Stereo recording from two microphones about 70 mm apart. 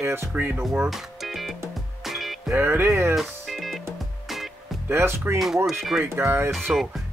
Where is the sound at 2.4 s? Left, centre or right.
Right.